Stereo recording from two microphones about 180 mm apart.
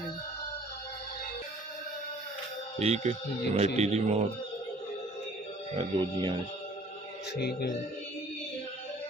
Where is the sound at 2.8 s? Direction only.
40° right (ahead or behind).